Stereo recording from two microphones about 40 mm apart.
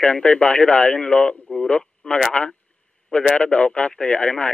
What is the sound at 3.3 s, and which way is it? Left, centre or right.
Speech, left.